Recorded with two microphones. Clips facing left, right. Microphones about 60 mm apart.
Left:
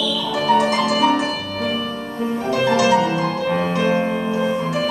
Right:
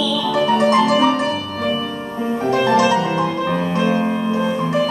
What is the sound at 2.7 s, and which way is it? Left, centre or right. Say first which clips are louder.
Music: right 1 dB; right.